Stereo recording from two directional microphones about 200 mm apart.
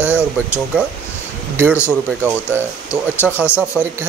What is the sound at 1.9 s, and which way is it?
Speech, 5° right (ahead or behind).